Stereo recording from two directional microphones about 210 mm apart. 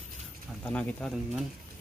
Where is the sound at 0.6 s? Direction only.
5° left (ahead or behind).